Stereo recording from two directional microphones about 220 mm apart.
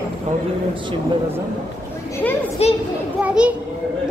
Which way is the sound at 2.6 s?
30° left (ahead or behind).